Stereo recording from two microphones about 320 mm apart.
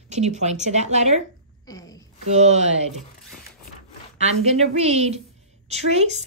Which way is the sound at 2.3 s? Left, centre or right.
Right.